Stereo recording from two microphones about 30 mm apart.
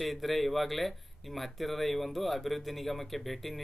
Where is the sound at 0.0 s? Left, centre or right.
Centre.